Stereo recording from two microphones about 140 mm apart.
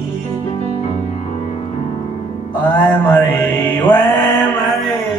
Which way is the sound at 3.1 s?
15° left (ahead or behind).